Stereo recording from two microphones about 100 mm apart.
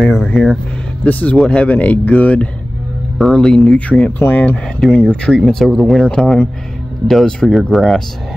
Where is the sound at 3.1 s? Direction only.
5° left (ahead or behind).